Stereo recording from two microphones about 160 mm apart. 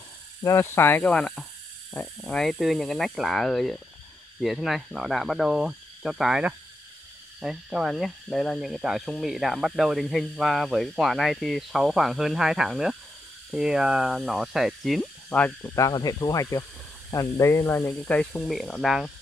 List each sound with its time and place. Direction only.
0.4 s speech: 20° left (ahead or behind)
15.7 s speech: 20° left (ahead or behind); by 19.1 s centre (ahead or behind)